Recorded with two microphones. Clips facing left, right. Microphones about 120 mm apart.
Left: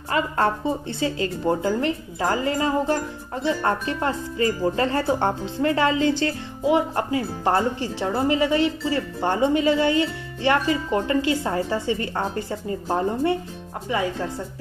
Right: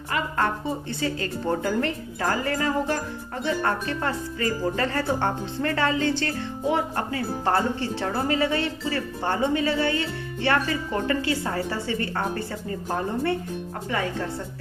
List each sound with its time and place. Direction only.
0.1 s speech: 30° left (ahead or behind)
0.9 s speech: 20° left (ahead or behind)